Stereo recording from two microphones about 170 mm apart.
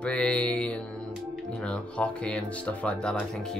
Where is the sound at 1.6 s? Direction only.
5° left (ahead or behind).